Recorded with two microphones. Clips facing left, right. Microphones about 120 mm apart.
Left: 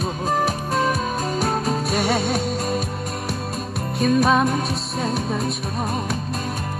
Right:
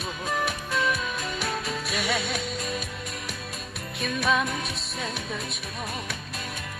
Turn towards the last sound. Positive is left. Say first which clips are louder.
# left 9 dB
turn(degrees=40)  # may be behind; listen again after turning